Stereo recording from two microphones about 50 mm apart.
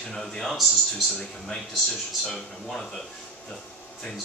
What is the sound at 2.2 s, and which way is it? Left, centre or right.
Speech, centre.